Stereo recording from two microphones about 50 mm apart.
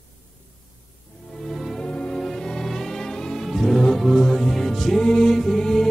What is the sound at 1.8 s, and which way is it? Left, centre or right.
Music, centre.